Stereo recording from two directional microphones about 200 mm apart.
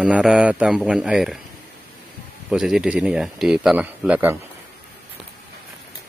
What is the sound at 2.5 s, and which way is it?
Speech, centre (ahead or behind).